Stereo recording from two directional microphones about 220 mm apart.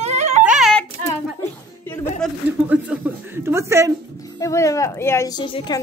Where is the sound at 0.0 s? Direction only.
30° right (ahead or behind).